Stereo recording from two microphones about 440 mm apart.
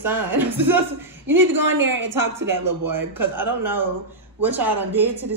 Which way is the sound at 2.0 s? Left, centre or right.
Right.